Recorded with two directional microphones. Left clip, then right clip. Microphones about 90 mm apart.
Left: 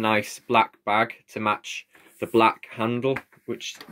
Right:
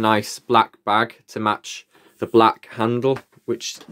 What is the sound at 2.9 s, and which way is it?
Speech, 60° right (ahead or behind).